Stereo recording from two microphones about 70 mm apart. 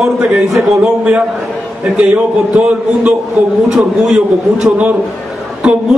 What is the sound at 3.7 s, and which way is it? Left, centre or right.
A man's voice, centre.